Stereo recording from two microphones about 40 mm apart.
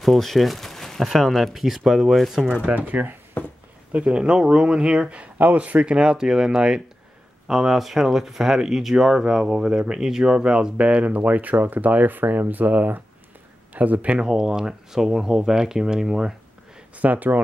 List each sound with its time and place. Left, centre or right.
0.0 s speech: centre
2.7 s speech: right
3.4 s a sound: left
3.9 s speech: right
5.4 s speech: right
5.9 s speech: centre; by 14.1 s right
14.1 s speech: centre
16.9 s speech: right